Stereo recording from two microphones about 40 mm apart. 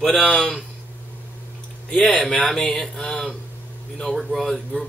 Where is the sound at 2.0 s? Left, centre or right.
Centre.